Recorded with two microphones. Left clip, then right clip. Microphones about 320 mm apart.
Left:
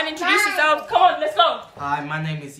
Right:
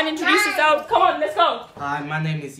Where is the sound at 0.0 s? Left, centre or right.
Centre.